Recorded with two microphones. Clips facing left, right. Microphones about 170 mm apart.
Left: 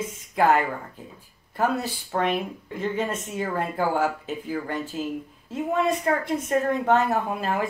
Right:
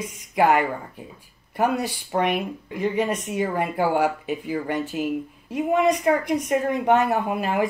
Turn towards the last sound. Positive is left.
turn(degrees=-15)  # may be behind; listen again after turning